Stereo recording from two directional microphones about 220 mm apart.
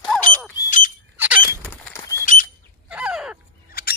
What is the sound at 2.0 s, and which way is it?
Bird flight, 15° left (ahead or behind).